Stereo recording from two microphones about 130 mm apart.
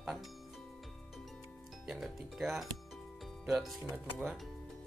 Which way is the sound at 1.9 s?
Centre (ahead or behind).